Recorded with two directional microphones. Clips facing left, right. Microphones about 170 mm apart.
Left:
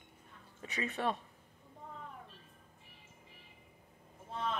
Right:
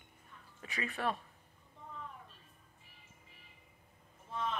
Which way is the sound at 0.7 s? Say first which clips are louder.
Left 2 dB; 25° left (ahead or behind).